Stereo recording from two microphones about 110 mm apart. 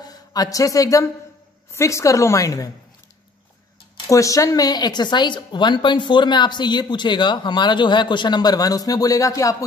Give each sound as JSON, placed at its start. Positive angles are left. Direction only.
{"t": 0.0, "sound": "a woman's voice", "side_deg": 35}
{"t": 4.1, "sound": "speech", "side_deg": 30}